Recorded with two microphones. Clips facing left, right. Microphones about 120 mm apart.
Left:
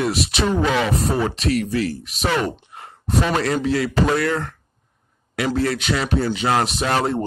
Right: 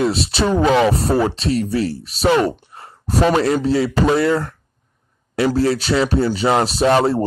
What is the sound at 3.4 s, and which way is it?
Speech, 30° right (ahead or behind).